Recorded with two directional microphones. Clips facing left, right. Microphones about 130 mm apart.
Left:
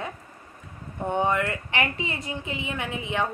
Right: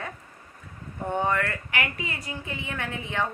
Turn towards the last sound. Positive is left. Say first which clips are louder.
# left 2 dB
turn(degrees=15)  # may be behind; listen again after turning